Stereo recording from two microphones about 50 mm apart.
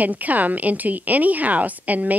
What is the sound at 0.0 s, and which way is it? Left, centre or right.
A woman's voice, right.